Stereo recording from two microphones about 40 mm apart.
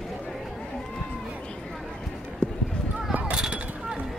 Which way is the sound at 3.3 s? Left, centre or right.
Right.